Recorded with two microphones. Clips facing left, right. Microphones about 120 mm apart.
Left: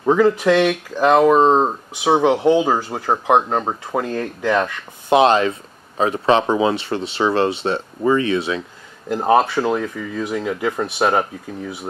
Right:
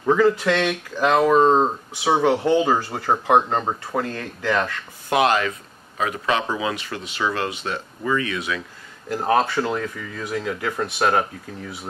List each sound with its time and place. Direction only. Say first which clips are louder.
0.0 s speech: left 3 dB; 15° left (ahead or behind)
5.1 s speech: left 5 dB; 25° left (ahead or behind); by 11.7 s 10° left (ahead or behind)